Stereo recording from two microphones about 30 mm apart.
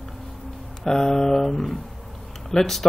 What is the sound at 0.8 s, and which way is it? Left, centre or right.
Speech, centre.